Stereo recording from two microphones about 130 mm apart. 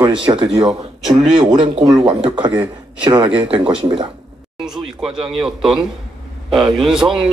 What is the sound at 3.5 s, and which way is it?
A man's voice, 5° right (ahead or behind).